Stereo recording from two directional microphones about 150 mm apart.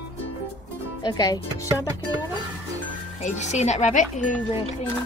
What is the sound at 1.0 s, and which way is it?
Speech, 25° left (ahead or behind).